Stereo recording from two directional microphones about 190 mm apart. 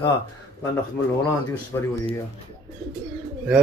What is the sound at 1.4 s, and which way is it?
Speech, 15° left (ahead or behind).